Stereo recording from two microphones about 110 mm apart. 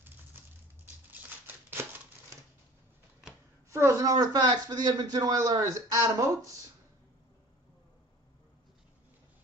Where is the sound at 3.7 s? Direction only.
25° right (ahead or behind).